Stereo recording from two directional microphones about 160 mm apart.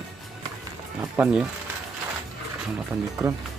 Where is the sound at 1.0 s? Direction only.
10° right (ahead or behind).